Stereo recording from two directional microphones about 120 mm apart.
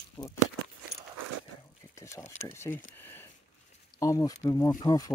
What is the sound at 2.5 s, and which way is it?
Speech, 20° left (ahead or behind).